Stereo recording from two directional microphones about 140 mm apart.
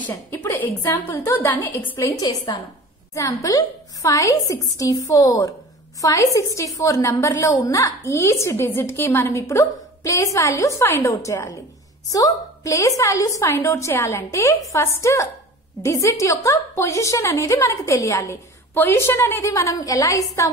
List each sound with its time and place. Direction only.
0.0 s a woman's voice: 15° left (ahead or behind)
2.1 s a woman's voice: 30° left (ahead or behind)